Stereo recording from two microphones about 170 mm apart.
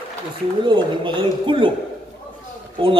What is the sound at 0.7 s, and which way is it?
A man's voice, 25° right (ahead or behind).